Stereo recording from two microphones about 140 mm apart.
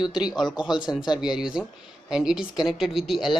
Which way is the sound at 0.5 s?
35° left (ahead or behind).